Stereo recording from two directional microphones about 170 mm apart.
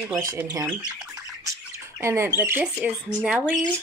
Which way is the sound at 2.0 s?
15° right (ahead or behind).